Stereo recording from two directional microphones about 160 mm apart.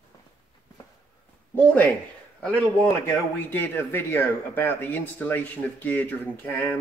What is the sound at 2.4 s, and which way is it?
Speech, 10° left (ahead or behind).